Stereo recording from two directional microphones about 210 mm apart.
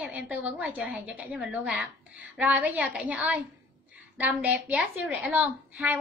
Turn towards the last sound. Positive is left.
turn(degrees=-10)  # may be behind; listen again after turning